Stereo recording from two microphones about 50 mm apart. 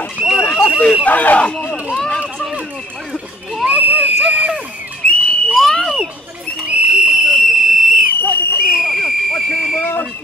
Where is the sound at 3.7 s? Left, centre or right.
Right.